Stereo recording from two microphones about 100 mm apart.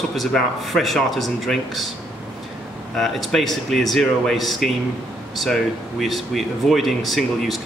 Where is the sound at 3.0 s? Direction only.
Centre (ahead or behind).